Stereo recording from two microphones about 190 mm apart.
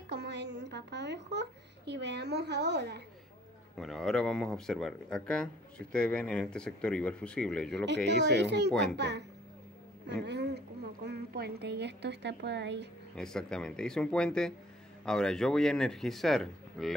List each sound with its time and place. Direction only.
0.1 s a woman's voice: 65° right (ahead or behind)
3.7 s speech: centre (ahead or behind)
8.1 s a woman's voice: 65° right (ahead or behind)
13.1 s speech: 5° left (ahead or behind)